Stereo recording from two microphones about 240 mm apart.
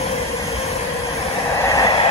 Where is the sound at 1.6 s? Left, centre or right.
Centre.